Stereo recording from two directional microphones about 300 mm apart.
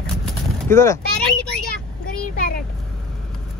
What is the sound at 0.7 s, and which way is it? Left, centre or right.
Speech, centre.